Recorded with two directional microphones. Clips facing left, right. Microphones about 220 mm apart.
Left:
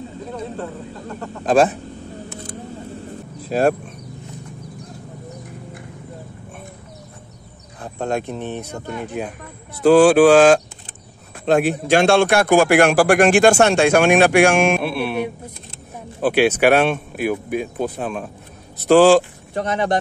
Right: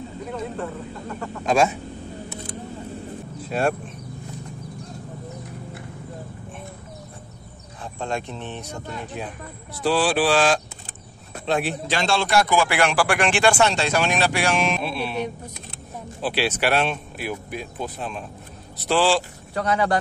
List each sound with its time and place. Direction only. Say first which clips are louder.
1.5 s a man's voice: left 5 dB; 50° left (ahead or behind)
3.4 s speech: left 6 dB; 40° left (ahead or behind)
7.8 s speech: left 5 dB; 60° left (ahead or behind)
8.3 s a man's voice: left 6 dB; 50° left (ahead or behind)
19.5 s speech: left 2 dB; 20° left (ahead or behind)